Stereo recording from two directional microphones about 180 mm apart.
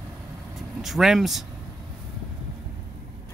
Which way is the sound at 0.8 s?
Centre (ahead or behind).